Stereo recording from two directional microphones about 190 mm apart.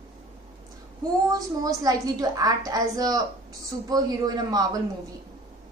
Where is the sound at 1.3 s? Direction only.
20° right (ahead or behind).